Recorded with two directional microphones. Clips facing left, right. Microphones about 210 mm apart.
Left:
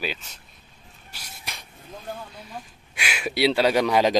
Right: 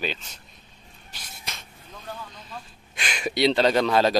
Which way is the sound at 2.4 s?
10° left (ahead or behind).